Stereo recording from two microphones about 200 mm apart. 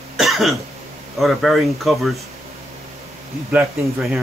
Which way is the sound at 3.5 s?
5° right (ahead or behind).